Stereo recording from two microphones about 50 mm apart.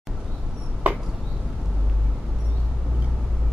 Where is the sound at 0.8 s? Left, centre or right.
Right.